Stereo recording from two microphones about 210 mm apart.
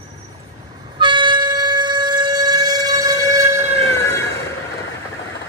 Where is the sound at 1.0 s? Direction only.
20° right (ahead or behind).